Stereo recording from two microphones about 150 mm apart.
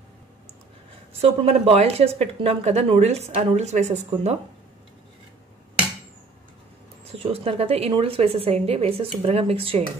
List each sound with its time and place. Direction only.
1.2 s speech: 45° right (ahead or behind)
7.1 s a woman's voice: 40° right (ahead or behind)